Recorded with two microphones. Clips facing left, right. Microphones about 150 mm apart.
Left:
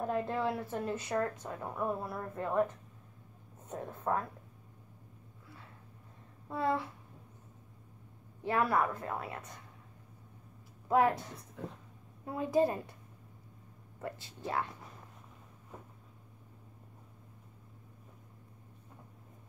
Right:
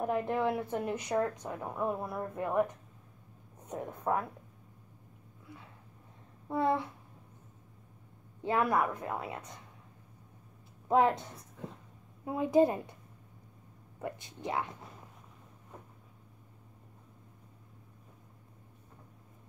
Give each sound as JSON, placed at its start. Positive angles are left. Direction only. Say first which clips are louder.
{"t": 0.0, "sound": "speech", "louder": "right 2 dB", "side_deg": -15}
{"t": 6.5, "sound": "a woman's voice", "louder": "right 3 dB", "side_deg": -20}
{"t": 8.4, "sound": "a woman's voice", "louder": "right 1 dB", "side_deg": -20}
{"t": 10.9, "sound": "a woman's voice", "louder": "right 1 dB", "side_deg": -20}
{"t": 12.3, "sound": "a woman's voice", "louder": "right 4 dB", "side_deg": -20}
{"t": 14.0, "sound": "speech", "louder": "right 2 dB", "side_deg": -20}